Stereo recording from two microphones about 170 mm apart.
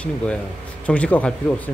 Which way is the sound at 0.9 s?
10° left (ahead or behind).